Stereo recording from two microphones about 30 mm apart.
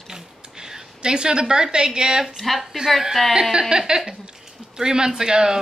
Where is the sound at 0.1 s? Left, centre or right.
Centre.